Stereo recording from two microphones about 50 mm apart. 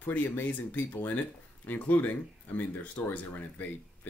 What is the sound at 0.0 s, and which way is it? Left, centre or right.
Speech, left.